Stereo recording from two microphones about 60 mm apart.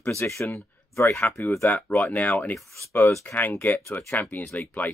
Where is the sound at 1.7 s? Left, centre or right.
Left.